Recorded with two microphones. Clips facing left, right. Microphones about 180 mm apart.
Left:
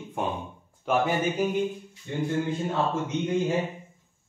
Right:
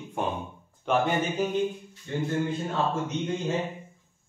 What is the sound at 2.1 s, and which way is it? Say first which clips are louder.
Speech: even; 15° left (ahead or behind).